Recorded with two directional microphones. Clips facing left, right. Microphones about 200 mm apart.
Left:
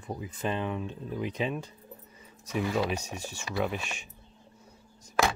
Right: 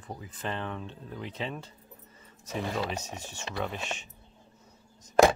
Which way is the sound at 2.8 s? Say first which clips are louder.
Left 3 dB; 10° left (ahead or behind).